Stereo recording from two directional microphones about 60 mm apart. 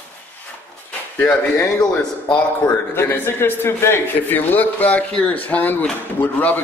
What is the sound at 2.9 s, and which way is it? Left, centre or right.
A man's voice, left.